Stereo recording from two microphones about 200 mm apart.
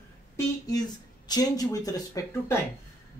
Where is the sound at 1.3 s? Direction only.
20° left (ahead or behind).